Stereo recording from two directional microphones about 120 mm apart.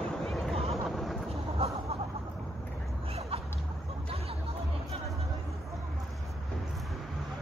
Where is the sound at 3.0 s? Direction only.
55° right (ahead or behind).